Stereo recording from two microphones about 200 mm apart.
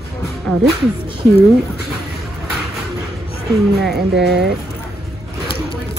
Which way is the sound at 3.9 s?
55° right (ahead or behind).